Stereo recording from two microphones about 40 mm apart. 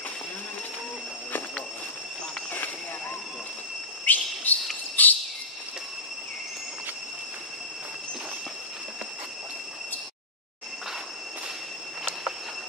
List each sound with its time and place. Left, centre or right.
4.1 s bird: left
4.5 s cricket: left